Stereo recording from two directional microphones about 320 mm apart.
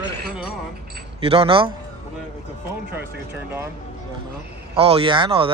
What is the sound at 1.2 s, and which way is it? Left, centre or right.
Speech, centre.